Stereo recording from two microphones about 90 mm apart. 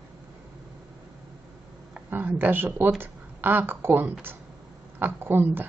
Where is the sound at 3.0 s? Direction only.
20° right (ahead or behind).